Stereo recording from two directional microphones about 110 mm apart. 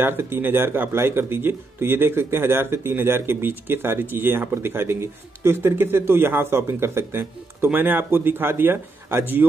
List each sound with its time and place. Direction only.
0.0 s speech: 20° right (ahead or behind)